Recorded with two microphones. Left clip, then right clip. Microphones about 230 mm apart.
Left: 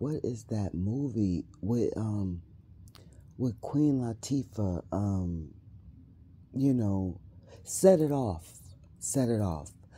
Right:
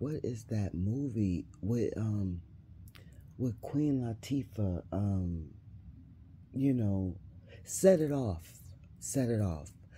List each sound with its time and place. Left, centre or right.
0.0 s speech: left
3.3 s speech: left
6.5 s speech: left